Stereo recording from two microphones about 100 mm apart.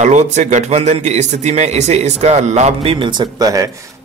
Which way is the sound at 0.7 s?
90° right.